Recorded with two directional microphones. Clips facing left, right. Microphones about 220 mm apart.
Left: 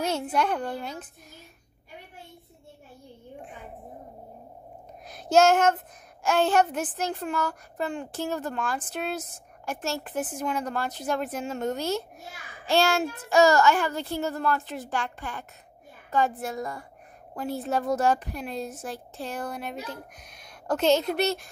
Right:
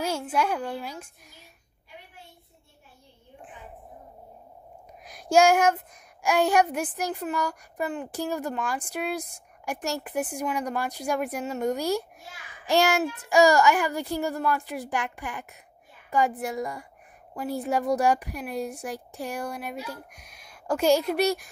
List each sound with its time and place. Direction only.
0.3 s speech: 5° right (ahead or behind)
5.0 s a sound: 10° right (ahead or behind)
6.2 s speech: 15° right (ahead or behind)